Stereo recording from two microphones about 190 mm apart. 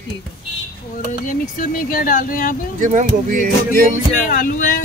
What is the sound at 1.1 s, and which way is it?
Speech, 45° left (ahead or behind).